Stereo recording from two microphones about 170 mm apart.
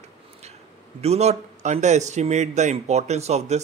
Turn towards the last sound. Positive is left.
turn(degrees=-40)  # may be behind; listen again after turning